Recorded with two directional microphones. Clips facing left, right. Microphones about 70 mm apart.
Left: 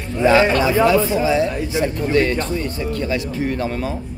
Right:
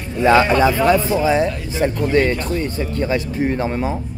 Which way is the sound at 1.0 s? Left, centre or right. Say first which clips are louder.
Right 1 dB; left.